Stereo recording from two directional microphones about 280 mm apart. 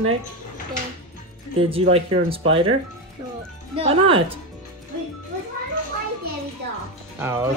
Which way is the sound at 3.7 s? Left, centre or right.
Centre.